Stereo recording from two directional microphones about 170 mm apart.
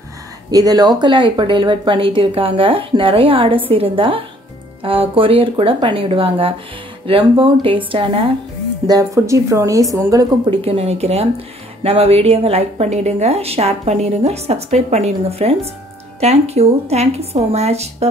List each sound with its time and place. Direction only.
0.5 s a woman's voice: 20° right (ahead or behind)
8.8 s a woman's voice: 20° right (ahead or behind)
10.5 s a woman's voice: 35° right (ahead or behind)